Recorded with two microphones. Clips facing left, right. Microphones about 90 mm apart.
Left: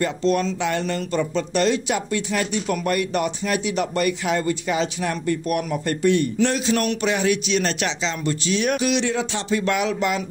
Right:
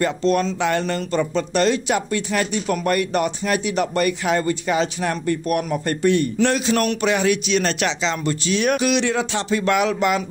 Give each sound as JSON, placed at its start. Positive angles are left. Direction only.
{"t": 0.0, "sound": "speech", "side_deg": -50}
{"t": 6.4, "sound": "a man's voice", "side_deg": -60}